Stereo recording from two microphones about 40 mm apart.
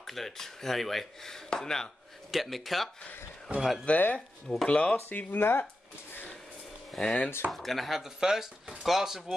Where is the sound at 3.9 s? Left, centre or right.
Left.